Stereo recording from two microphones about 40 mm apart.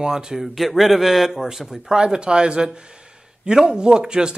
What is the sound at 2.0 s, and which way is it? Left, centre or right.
Speech, right.